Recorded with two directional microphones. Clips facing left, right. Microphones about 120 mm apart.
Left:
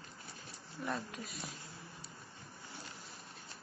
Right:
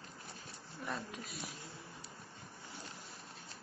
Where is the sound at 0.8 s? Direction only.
Centre (ahead or behind).